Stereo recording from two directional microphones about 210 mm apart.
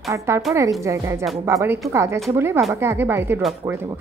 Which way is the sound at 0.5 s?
Centre (ahead or behind).